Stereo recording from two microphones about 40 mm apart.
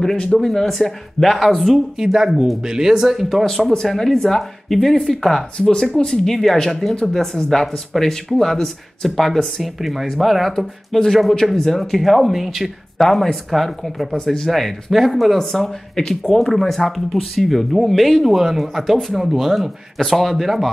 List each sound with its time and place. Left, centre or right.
0.4 s speech: centre
2.0 s speech: centre
3.4 s speech: centre
5.6 s speech: left; by 12.7 s centre
12.9 s speech: centre
15.5 s speech: centre
20.0 s speech: centre